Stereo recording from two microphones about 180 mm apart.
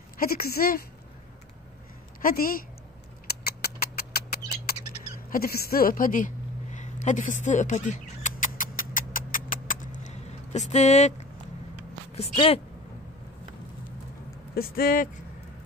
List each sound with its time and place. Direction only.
0.2 s a woman's voice: 55° left (ahead or behind)
2.2 s speech: 55° left (ahead or behind)
3.3 s a sound: 60° left (ahead or behind); by 11.2 s 40° left (ahead or behind)
12.2 s speech: 35° left (ahead or behind)
14.5 s a woman's voice: 55° left (ahead or behind)